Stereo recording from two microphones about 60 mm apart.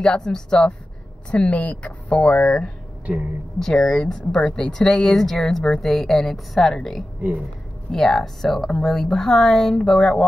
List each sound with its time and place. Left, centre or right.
0.0 s speech: centre